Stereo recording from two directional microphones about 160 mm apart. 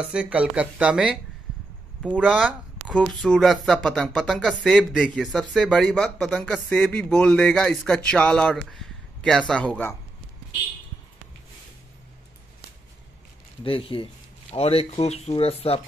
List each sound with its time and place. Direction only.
0.1 s speech: 5° right (ahead or behind); by 9.9 s 10° left (ahead or behind)
13.7 s speech: 35° left (ahead or behind)